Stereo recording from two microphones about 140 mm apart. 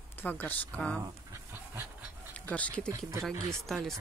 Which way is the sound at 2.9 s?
20° right (ahead or behind).